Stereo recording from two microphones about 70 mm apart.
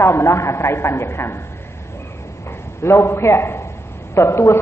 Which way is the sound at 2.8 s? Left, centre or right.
Left.